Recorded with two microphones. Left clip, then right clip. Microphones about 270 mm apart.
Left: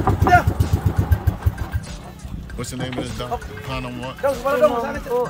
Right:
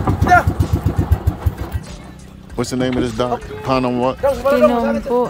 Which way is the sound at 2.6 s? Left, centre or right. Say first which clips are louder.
Right 9 dB; centre.